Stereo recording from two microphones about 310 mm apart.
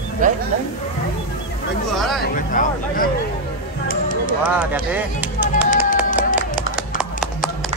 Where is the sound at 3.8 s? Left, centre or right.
Left.